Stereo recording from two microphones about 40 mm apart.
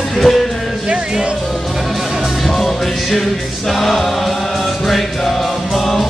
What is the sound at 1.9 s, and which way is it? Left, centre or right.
Music, centre.